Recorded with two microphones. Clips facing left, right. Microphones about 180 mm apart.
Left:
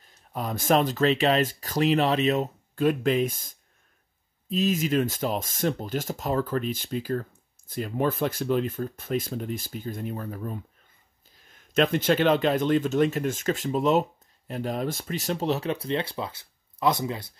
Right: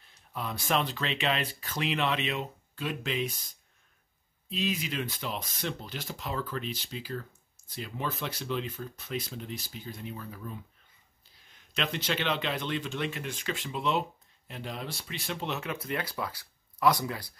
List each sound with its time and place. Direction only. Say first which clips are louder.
0.0 s speech: left 5 dB; 45° left (ahead or behind); by 17.3 s 25° left (ahead or behind)